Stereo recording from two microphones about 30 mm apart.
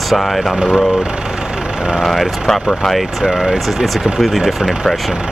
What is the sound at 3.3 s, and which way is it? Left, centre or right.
Speech, centre.